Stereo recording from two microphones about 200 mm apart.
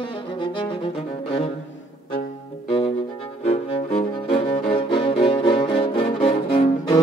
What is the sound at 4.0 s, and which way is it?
Music, 30° left (ahead or behind).